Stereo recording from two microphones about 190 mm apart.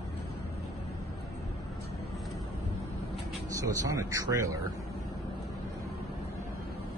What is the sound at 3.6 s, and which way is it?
Speech, 15° right (ahead or behind).